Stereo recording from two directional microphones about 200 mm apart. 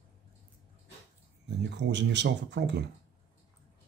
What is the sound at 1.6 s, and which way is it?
Speech, 60° right (ahead or behind).